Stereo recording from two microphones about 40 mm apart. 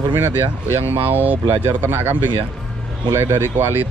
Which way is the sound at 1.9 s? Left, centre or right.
Right.